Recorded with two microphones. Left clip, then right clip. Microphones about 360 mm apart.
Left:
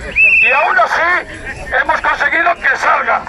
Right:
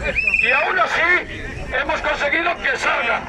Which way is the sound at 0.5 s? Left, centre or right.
Centre.